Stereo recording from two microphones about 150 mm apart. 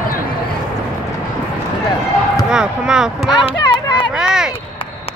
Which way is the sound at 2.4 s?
5° right (ahead or behind).